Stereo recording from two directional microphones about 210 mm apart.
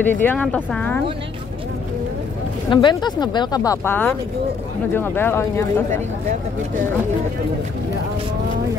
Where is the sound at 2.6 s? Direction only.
20° left (ahead or behind).